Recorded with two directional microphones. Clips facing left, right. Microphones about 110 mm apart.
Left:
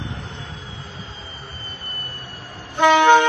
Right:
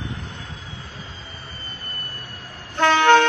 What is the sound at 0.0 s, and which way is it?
Vehicle, 25° left (ahead or behind).